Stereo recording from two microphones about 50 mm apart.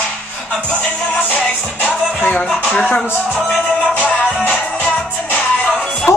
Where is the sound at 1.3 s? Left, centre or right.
Left.